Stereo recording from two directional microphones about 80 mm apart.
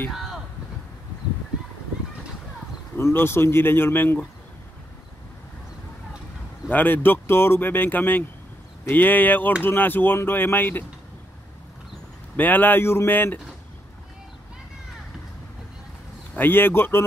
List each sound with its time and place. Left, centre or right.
0.1 s a sound: centre
3.0 s speech: left
6.7 s speech: left
12.4 s speech: left
16.3 s speech: left